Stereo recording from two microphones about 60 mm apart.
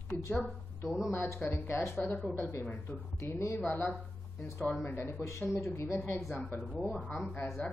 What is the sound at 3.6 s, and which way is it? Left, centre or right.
Speech, left.